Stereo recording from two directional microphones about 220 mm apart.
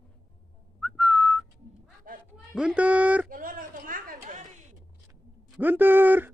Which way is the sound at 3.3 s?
40° right (ahead or behind).